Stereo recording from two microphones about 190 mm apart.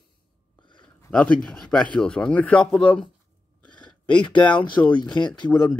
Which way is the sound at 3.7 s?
25° left (ahead or behind).